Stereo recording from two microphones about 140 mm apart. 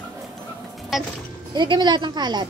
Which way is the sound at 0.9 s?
Centre (ahead or behind).